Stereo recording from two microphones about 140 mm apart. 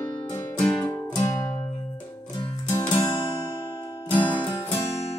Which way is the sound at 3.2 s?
30° left (ahead or behind).